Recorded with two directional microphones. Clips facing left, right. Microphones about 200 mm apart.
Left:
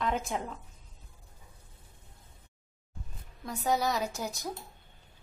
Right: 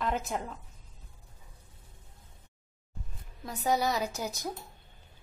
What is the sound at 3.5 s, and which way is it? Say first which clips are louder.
Speech: right 1 dB; centre (ahead or behind).